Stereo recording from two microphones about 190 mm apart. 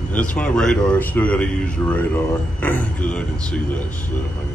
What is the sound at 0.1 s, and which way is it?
Speech, 5° left (ahead or behind).